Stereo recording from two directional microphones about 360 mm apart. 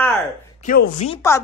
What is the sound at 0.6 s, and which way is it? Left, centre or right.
Speech, left.